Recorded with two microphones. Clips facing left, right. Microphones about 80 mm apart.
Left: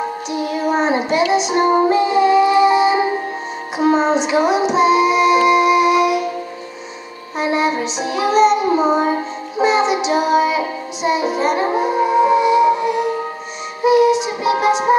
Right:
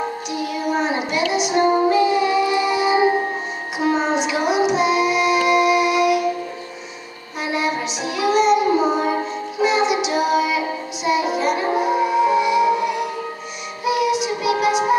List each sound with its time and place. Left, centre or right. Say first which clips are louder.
0.4 s child singing: left 4 dB; left
1.3 s music: even; left
3.7 s child singing: left 5 dB; left
7.3 s music: left 5 dB; left
9.6 s child singing: left 3 dB; left
13.8 s music: left 6 dB; left